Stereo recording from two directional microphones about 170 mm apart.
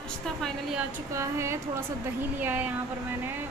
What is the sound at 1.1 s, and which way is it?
Speech, 15° right (ahead or behind).